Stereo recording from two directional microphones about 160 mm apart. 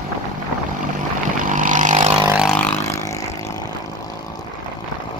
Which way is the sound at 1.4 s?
55° right (ahead or behind).